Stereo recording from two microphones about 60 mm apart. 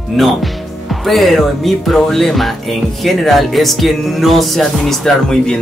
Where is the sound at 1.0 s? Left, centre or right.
Centre.